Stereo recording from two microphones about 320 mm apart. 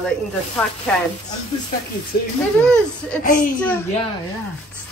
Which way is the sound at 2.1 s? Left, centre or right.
Left.